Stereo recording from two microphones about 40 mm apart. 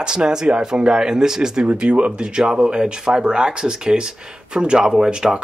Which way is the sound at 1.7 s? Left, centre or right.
Right.